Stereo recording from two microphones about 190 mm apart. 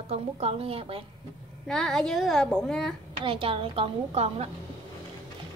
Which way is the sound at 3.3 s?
30° right (ahead or behind).